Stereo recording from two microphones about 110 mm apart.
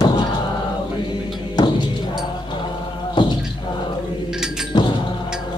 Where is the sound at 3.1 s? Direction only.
45° left (ahead or behind).